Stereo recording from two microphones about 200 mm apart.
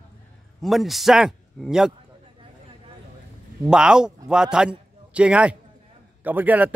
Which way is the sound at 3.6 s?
5° right (ahead or behind).